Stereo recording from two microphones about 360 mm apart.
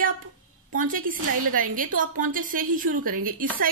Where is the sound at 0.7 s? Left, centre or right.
Right.